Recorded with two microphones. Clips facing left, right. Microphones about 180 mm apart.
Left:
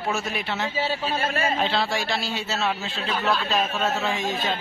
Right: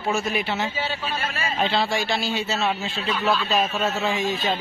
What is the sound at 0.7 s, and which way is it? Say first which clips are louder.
Speech: left 3 dB; 35° left (ahead or behind).